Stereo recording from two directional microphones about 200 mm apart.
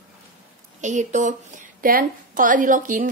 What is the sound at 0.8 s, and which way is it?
A woman's voice, 35° right (ahead or behind).